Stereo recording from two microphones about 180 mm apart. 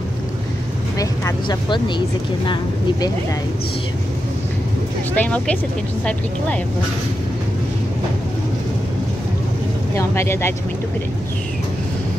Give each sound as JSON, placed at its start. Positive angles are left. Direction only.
{"t": 0.9, "sound": "speech", "side_deg": 20}
{"t": 5.1, "sound": "speech", "side_deg": 10}
{"t": 9.9, "sound": "speech", "side_deg": 15}